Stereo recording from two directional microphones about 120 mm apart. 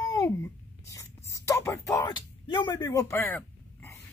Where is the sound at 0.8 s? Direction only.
25° left (ahead or behind).